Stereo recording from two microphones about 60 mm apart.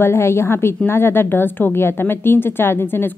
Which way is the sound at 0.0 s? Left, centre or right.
Left.